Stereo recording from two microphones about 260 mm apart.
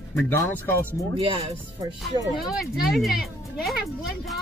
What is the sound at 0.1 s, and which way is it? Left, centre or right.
Speech, centre.